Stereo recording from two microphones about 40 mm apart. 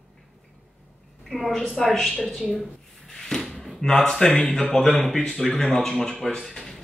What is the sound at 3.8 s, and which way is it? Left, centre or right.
Speech, centre.